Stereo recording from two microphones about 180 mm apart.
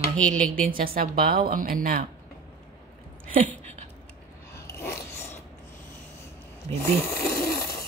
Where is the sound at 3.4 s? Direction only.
35° right (ahead or behind).